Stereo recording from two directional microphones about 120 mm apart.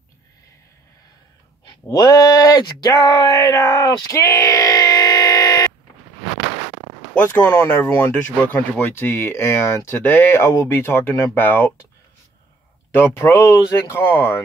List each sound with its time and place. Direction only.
1.9 s speech: 30° left (ahead or behind)
7.5 s speech: 15° left (ahead or behind)
12.9 s speech: 20° left (ahead or behind)